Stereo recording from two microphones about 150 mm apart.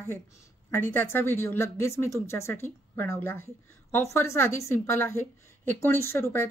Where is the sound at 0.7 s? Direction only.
15° left (ahead or behind).